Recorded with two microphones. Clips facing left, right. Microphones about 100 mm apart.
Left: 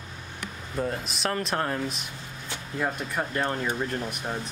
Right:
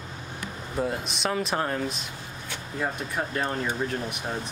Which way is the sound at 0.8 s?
Centre (ahead or behind).